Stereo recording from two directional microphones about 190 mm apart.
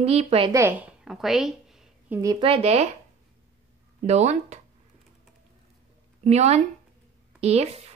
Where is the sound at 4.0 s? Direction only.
35° right (ahead or behind).